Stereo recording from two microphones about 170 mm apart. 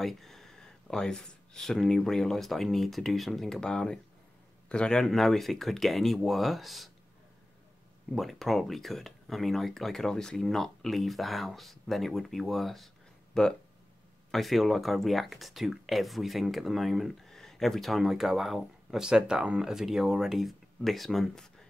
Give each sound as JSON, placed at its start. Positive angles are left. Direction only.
{"t": 0.0, "sound": "speech", "side_deg": 0}
{"t": 8.1, "sound": "speech", "side_deg": 0}